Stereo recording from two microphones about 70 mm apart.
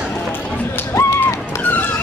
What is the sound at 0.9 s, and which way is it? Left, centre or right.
Run, left.